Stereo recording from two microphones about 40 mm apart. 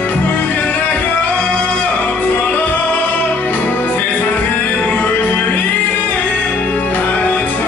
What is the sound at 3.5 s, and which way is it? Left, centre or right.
Music, left.